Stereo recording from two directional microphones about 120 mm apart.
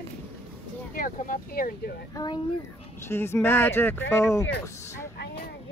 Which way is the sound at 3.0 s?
20° left (ahead or behind).